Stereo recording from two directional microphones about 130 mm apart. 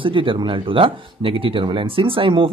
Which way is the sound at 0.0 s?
40° right (ahead or behind).